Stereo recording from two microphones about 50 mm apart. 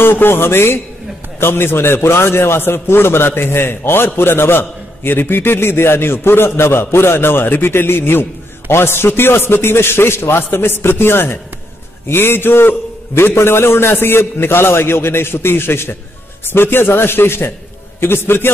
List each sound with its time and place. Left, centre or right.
0.0 s a man's voice: left